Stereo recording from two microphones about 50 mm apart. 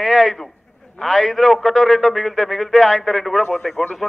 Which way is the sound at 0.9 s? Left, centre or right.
Centre.